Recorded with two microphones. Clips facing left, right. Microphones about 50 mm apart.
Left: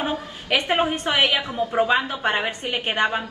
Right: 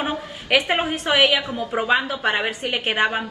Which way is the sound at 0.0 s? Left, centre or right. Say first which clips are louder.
Even; right.